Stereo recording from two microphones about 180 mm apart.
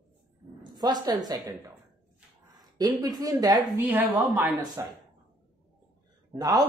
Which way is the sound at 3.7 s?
10° right (ahead or behind).